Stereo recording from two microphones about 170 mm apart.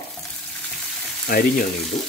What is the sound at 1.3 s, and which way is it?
Speech, 65° left (ahead or behind).